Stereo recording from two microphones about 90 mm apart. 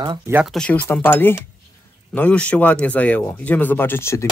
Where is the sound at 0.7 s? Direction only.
20° left (ahead or behind).